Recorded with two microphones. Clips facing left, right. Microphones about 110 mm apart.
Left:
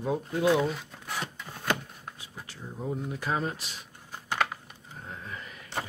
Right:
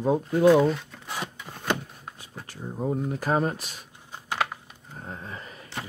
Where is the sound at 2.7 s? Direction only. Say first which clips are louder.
Right 6 dB; 45° right (ahead or behind).